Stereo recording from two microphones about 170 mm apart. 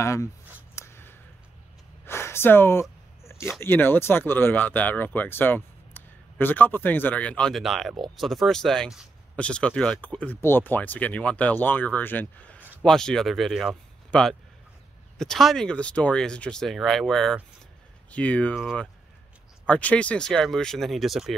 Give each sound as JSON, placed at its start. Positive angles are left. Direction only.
{"t": 0.0, "sound": "speech", "side_deg": 15}
{"t": 0.7, "sound": "a sound", "side_deg": 15}
{"t": 2.0, "sound": "speech", "side_deg": 15}